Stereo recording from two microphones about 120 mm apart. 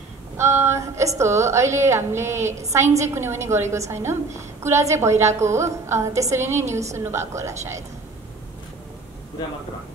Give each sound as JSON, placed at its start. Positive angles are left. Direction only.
{"t": 0.4, "sound": "a woman's voice", "side_deg": -25}